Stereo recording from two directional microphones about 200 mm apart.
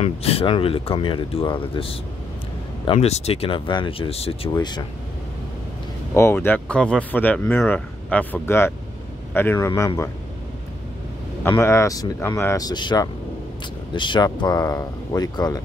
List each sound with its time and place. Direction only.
0.0 s speech: 30° left (ahead or behind)
6.1 s speech: 10° left (ahead or behind)
11.4 s speech: 10° left (ahead or behind)